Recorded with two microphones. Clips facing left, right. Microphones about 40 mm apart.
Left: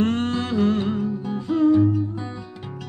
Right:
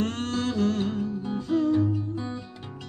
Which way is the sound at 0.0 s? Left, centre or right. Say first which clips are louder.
Left 5 dB; centre.